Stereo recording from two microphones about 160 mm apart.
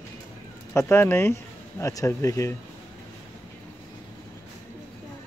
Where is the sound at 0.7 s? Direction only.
15° left (ahead or behind).